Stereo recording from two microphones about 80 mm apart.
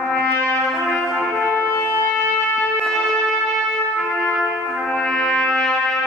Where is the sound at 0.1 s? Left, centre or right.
Centre.